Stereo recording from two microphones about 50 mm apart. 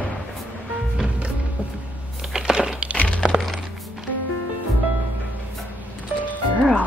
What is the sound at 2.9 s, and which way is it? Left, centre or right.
Music, left.